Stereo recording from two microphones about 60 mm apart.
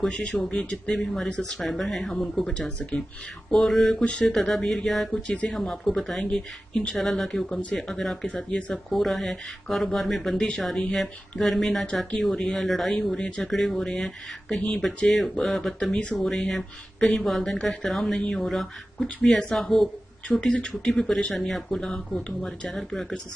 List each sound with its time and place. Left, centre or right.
0.3 s speech: centre
2.5 s speech: centre
3.5 s speech: centre
4.0 s speech: left
4.3 s speech: centre
8.5 s speech: centre
8.7 s speech: centre
17.4 s speech: centre
17.6 s speech: centre
20.2 s speech: centre